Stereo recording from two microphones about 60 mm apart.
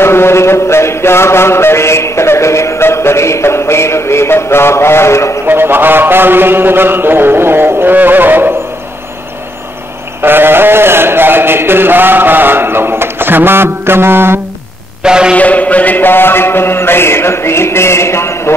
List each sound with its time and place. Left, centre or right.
0.0 s mantra: left
5.5 s mantra: right
10.2 s sheep: right
15.0 s a man's voice: centre
15.3 s mantra: left